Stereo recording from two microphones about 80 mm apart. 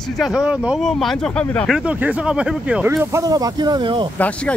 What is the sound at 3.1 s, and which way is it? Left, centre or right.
Speech, right.